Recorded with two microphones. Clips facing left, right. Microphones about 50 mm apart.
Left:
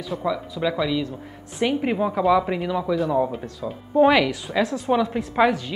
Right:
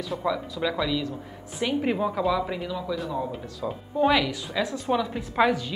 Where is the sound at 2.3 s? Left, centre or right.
Left.